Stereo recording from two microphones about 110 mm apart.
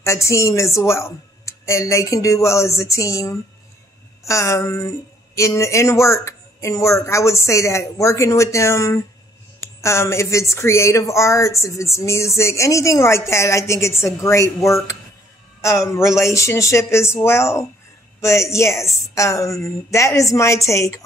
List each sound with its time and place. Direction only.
0.0 s speech: 25° left (ahead or behind)